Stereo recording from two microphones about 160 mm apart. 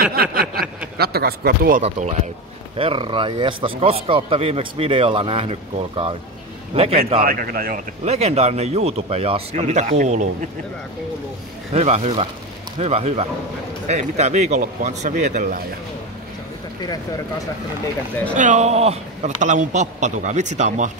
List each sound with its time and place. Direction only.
0.0 s a sound: 70° right (ahead or behind)
0.9 s speech: 80° right
1.8 s a man's voice: 45° right (ahead or behind)
2.8 s a man's voice: 35° right (ahead or behind)
7.2 s a man's voice: 65° right (ahead or behind)
8.0 s a man's voice: 40° right (ahead or behind)
11.7 s a man's voice: 45° right (ahead or behind)
18.3 s a man's voice: 50° right (ahead or behind)